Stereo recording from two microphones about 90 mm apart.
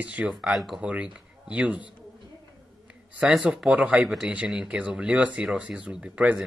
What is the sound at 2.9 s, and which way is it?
Speech, 10° right (ahead or behind).